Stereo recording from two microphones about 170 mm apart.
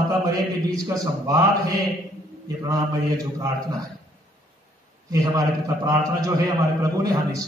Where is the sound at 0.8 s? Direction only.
20° right (ahead or behind).